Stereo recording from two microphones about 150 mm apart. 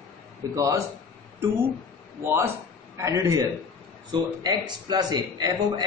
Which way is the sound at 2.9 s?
20° right (ahead or behind).